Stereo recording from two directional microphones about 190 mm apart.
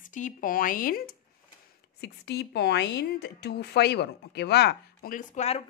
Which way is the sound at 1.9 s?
60° left (ahead or behind).